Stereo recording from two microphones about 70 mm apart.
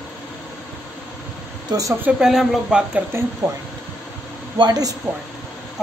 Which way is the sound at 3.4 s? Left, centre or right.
Right.